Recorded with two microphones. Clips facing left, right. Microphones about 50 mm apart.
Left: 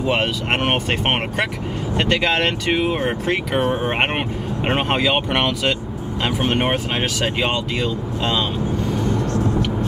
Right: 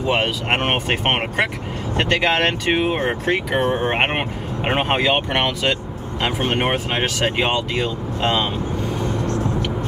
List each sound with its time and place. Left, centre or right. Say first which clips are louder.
0.1 s speech: right 2 dB; centre
2.0 s speech: right 1 dB; right
3.3 s speech: right 1 dB; centre
3.7 s speech: right 1 dB; centre
7.2 s speech: right 1 dB; right